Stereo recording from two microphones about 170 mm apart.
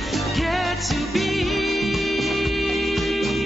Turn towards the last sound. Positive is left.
turn(degrees=0)  # may be behind; listen again after turning